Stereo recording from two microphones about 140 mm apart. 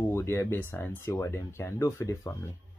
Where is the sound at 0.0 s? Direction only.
20° left (ahead or behind).